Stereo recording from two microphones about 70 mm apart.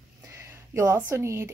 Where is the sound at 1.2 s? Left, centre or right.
Right.